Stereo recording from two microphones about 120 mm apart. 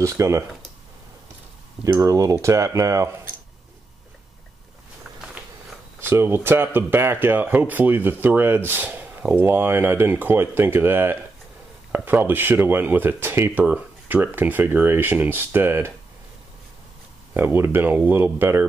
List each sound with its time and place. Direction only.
0.0 s speech: 25° right (ahead or behind)
1.9 s speech: 25° right (ahead or behind)
5.4 s a sound: 10° right (ahead or behind)
5.9 s speech: 20° right (ahead or behind)
17.3 s speech: 20° right (ahead or behind)